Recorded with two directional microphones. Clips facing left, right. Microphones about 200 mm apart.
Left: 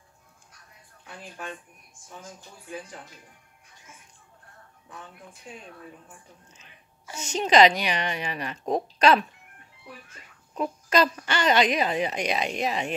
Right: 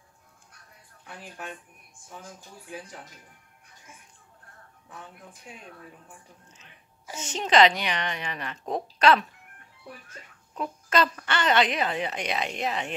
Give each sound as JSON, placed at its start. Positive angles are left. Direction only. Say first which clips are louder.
{"t": 7.1, "sound": "a woman's voice", "louder": "right 1 dB", "side_deg": -20}
{"t": 7.3, "sound": "a woman's voice", "louder": "left 2 dB", "side_deg": 15}
{"t": 10.5, "sound": "a child's voice", "louder": "left 2 dB", "side_deg": 15}